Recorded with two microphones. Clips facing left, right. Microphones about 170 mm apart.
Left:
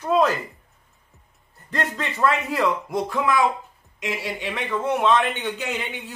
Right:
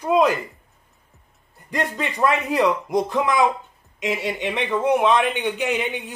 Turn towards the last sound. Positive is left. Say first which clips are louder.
# right 5 dB
turn(degrees=-15)  # may be behind; listen again after turning